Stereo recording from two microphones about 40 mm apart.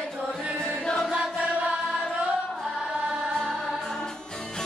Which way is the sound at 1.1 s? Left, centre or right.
Right.